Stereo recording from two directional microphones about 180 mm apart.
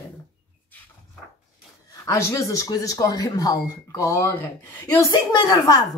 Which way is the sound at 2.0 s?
15° left (ahead or behind).